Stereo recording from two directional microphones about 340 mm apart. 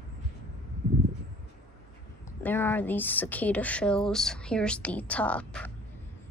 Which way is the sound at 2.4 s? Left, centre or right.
Centre.